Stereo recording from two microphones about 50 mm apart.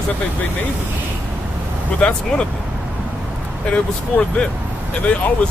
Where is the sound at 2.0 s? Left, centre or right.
Centre.